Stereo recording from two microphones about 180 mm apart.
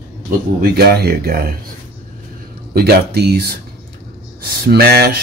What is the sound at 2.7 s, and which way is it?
Speech, 65° right (ahead or behind).